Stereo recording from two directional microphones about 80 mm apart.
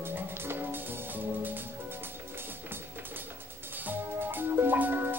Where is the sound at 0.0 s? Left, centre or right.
Right.